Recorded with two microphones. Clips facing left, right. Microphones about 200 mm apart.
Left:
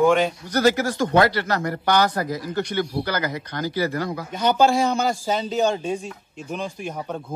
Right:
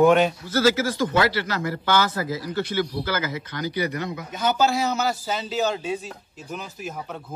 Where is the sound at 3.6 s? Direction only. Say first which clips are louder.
Left 3 dB; 20° right (ahead or behind).